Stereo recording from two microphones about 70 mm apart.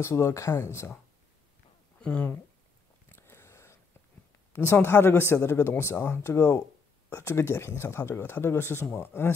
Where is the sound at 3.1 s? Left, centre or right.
Left.